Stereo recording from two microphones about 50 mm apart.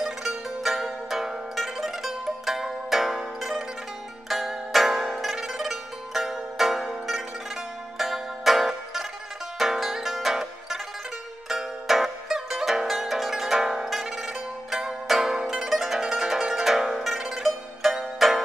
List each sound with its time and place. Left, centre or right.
0.0 s zither: centre
1.5 s music: centre
4.3 s zither: centre
8.0 s music: centre
9.6 s zither: centre
11.4 s music: centre